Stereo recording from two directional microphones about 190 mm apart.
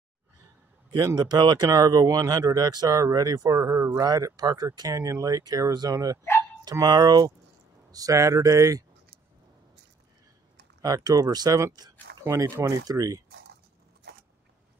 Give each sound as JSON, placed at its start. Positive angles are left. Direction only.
{"t": 0.9, "sound": "speech", "side_deg": -20}
{"t": 10.8, "sound": "speech", "side_deg": -20}